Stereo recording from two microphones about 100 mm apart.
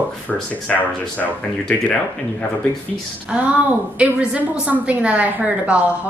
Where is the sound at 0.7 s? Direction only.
15° left (ahead or behind).